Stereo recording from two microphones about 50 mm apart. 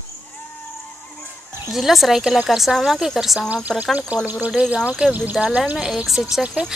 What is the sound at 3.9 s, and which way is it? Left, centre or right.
Speech, right.